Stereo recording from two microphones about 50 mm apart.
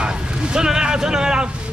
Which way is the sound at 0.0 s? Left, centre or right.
Centre.